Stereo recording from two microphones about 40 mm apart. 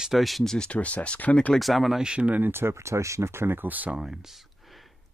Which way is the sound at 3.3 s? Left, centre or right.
Right.